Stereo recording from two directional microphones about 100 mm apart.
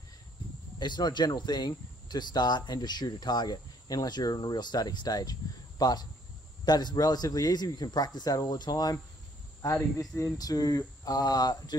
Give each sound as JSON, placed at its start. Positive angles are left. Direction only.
{"t": 0.7, "sound": "speech", "side_deg": 50}
{"t": 9.8, "sound": "speech", "side_deg": 25}
{"t": 10.3, "sound": "speech", "side_deg": 40}